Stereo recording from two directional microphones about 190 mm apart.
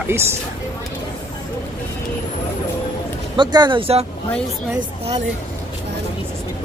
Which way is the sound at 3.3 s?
25° right (ahead or behind).